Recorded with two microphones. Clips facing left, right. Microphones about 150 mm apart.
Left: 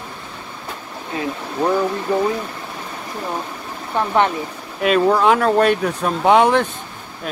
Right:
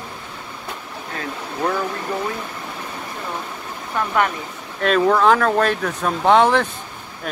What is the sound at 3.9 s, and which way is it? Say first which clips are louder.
Speech: left 3 dB; 25° left (ahead or behind).